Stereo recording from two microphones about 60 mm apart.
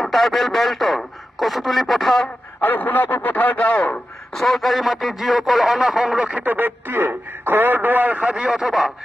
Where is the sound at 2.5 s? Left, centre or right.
Left.